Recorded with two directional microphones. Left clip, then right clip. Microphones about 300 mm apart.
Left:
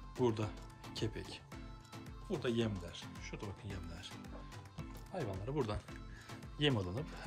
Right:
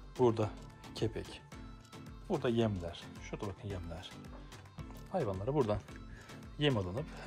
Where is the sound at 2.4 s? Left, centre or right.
Centre.